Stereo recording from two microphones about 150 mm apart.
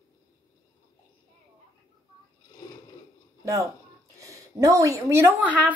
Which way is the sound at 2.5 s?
25° left (ahead or behind).